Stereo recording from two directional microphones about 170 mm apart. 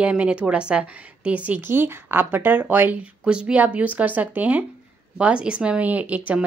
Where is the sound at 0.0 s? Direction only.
5° right (ahead or behind).